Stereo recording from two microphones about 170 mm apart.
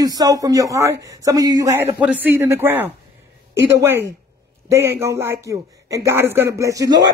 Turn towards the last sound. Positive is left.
turn(degrees=-20)  # may be behind; listen again after turning